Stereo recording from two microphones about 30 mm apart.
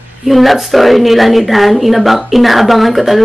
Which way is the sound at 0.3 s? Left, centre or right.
Centre.